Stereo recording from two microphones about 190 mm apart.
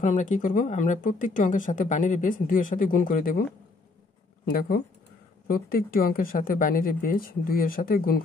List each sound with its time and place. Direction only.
0.0 s speech: 40° left (ahead or behind)
4.5 s speech: 50° left (ahead or behind)